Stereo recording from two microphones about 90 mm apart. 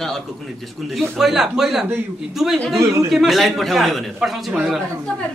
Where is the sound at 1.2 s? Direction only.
5° right (ahead or behind).